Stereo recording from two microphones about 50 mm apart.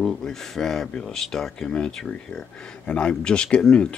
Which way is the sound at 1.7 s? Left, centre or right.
Centre.